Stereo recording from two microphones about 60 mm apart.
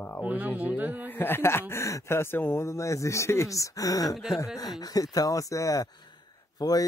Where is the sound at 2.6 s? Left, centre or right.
Left.